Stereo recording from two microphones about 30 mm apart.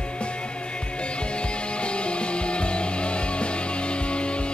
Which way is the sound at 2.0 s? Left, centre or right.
Left.